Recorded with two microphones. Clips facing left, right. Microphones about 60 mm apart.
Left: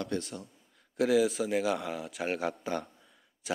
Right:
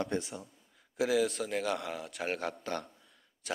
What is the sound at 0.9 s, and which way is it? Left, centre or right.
A man's voice, centre.